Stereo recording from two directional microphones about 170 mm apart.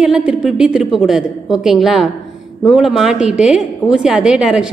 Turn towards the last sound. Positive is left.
turn(degrees=-5)  # may be behind; listen again after turning